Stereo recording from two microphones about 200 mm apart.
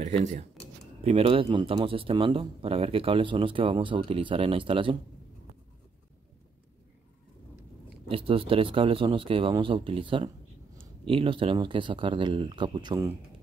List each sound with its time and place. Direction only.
0.0 s speech: 35° right (ahead or behind)
8.1 s speech: 25° right (ahead or behind)